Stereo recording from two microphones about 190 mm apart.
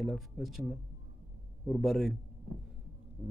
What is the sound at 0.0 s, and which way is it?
Speech, centre (ahead or behind).